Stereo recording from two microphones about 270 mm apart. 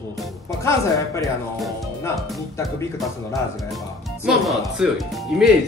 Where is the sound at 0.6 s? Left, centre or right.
Centre.